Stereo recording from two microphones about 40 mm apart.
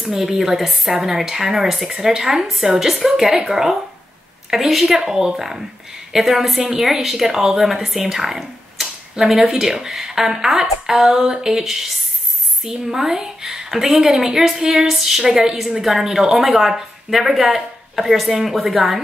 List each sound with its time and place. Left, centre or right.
0.0 s a woman's voice: centre
9.7 s speech: right
9.9 s a woman's voice: centre